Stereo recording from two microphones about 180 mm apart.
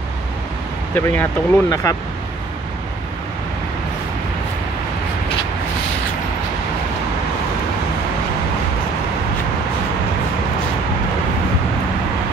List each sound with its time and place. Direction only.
0.9 s speech: 10° left (ahead or behind)